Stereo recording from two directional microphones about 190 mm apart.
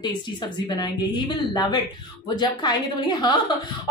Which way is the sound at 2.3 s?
25° left (ahead or behind).